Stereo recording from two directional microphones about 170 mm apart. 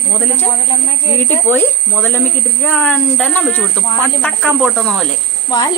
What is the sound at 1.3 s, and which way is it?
Speech, 10° left (ahead or behind).